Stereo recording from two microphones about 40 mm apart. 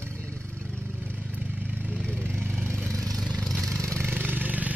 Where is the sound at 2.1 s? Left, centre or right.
Left.